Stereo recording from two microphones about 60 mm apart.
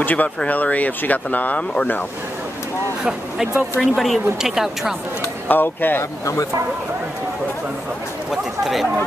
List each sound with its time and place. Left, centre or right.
0.0 s speech: left
3.0 s a woman's voice: centre
5.5 s speech: left
8.3 s speech: centre